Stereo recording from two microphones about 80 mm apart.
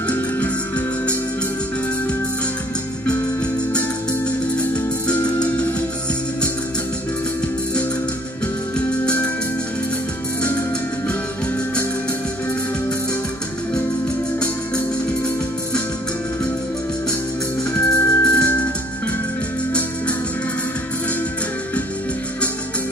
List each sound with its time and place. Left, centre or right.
0.1 s music: centre
4.6 s music: centre
17.7 s organ: left
18.2 s music: centre